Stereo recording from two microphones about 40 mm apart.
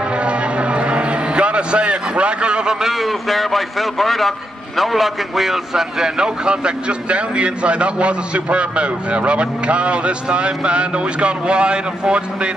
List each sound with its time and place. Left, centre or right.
0.2 s vehicle: right
2.8 s a man's voice: centre; by 12.2 s right